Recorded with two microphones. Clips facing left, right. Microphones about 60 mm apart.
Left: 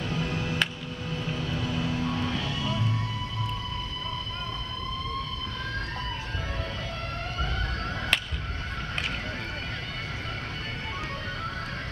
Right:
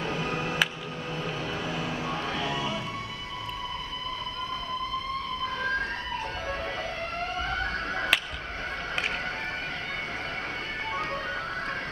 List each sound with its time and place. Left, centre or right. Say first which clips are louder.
0.0 s music: right 1 dB; right
1.2 s vehicle: even; right
2.0 s music: left 1 dB; centre